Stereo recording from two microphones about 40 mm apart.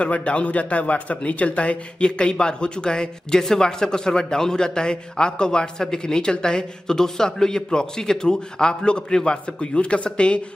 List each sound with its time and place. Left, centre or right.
0.0 s speech: left